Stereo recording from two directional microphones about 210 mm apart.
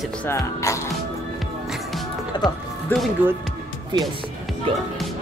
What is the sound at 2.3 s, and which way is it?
Music, 20° left (ahead or behind).